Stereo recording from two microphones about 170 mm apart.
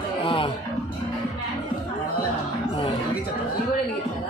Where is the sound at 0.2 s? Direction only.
30° left (ahead or behind).